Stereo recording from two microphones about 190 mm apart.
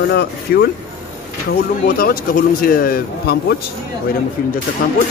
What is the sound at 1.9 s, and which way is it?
A man's voice, 50° left (ahead or behind).